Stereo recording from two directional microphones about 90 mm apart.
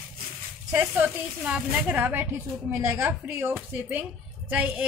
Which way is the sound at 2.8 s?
35° right (ahead or behind).